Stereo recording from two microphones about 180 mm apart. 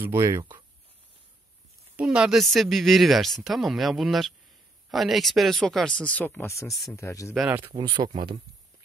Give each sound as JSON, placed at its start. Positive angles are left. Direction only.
{"t": 0.0, "sound": "speech", "side_deg": -15}
{"t": 2.0, "sound": "speech", "side_deg": -5}
{"t": 7.3, "sound": "speech", "side_deg": -10}
{"t": 7.7, "sound": "speech", "side_deg": -25}